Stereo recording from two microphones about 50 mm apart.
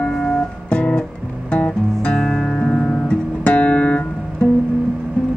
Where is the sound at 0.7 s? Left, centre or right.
Left.